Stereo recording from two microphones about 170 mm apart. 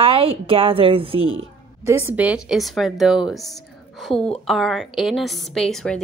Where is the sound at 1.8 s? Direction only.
15° right (ahead or behind).